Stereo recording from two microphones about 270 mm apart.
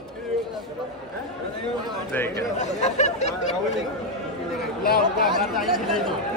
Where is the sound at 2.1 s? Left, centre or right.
Centre.